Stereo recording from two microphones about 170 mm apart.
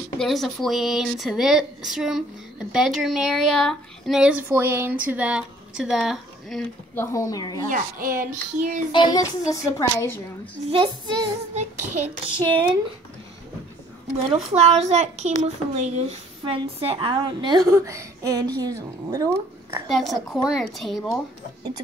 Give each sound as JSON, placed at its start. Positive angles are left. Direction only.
{"t": 0.2, "sound": "speech", "side_deg": 0}
{"t": 7.0, "sound": "a woman's voice", "side_deg": 20}
{"t": 7.7, "sound": "child singing", "side_deg": -55}
{"t": 8.9, "sound": "a woman's voice", "side_deg": 25}
{"t": 10.7, "sound": "a woman's voice", "side_deg": -30}
{"t": 12.3, "sound": "speech", "side_deg": -25}
{"t": 14.1, "sound": "a woman's voice", "side_deg": -35}
{"t": 19.9, "sound": "speech", "side_deg": 0}